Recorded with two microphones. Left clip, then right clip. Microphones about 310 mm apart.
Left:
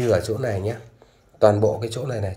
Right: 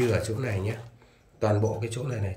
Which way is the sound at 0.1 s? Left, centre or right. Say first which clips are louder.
Left 8 dB; centre.